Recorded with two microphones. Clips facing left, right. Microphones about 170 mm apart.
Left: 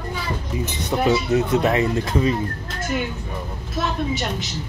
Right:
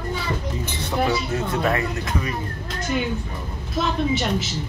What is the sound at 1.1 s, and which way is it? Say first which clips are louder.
Speech: left 5 dB; 20° left (ahead or behind).